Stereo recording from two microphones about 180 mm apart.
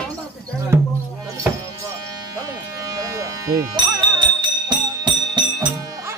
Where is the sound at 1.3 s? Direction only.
15° right (ahead or behind).